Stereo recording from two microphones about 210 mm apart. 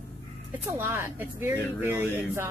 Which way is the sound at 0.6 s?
10° right (ahead or behind).